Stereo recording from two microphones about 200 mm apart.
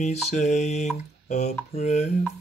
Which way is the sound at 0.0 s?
35° left (ahead or behind).